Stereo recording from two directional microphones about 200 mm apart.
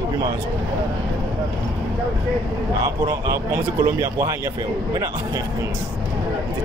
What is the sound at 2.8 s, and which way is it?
Speech, 15° right (ahead or behind).